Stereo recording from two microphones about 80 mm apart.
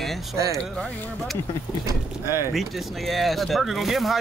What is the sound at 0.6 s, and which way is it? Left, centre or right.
Speech, centre.